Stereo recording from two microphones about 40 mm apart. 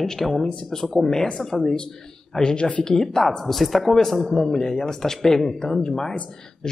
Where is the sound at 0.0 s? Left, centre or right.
Centre.